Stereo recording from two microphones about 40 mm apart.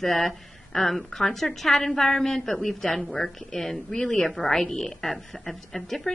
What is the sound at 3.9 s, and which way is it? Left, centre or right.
A woman's voice, centre.